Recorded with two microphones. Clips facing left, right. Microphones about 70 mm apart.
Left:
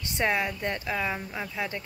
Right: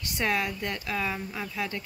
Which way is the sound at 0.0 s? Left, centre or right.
Left.